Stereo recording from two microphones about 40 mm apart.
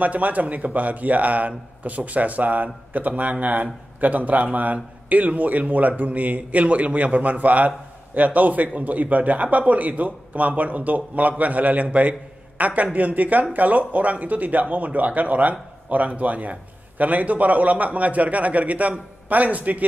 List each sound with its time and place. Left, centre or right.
0.0 s a man's voice: right